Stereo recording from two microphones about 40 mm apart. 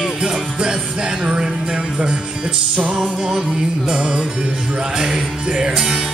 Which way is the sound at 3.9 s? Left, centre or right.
Right.